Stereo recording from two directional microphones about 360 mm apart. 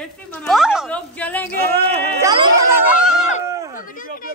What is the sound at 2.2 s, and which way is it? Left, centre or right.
Speech, centre.